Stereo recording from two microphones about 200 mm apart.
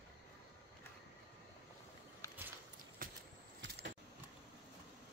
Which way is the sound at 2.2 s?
15° left (ahead or behind).